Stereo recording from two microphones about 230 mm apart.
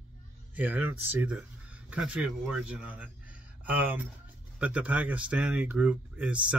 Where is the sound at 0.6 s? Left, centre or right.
Centre.